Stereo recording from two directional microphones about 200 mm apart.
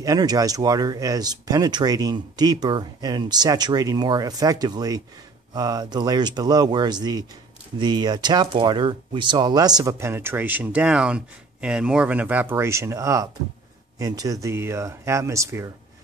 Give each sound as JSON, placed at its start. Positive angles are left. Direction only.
{"t": 0.0, "sound": "speech", "side_deg": -20}